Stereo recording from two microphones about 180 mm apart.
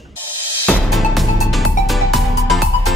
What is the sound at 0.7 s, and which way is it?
Music, centre (ahead or behind).